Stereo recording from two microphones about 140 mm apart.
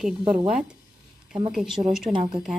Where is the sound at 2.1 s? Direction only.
35° right (ahead or behind).